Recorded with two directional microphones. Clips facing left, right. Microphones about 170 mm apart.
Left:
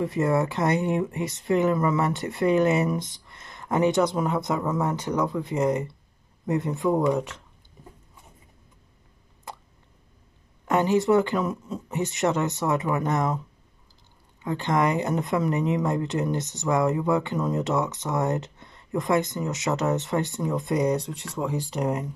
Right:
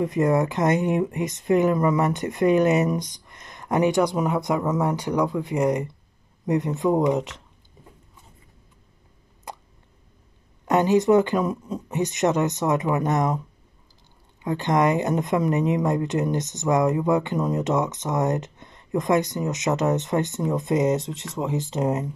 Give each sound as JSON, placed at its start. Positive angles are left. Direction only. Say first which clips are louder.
{"t": 0.0, "sound": "speech", "louder": "right 3 dB", "side_deg": -20}
{"t": 9.5, "sound": "drip", "louder": "right 2 dB", "side_deg": -15}
{"t": 10.7, "sound": "a woman's voice", "louder": "right 3 dB", "side_deg": -20}
{"t": 14.4, "sound": "a woman's voice", "louder": "right 3 dB", "side_deg": -20}